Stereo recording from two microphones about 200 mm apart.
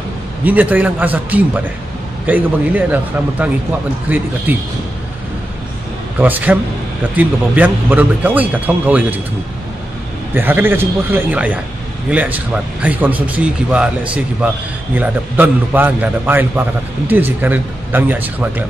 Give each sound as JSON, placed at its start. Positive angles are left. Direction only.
{"t": 0.5, "sound": "a man's voice", "side_deg": -10}
{"t": 6.1, "sound": "a man's voice", "side_deg": -10}
{"t": 10.3, "sound": "a man's voice", "side_deg": -10}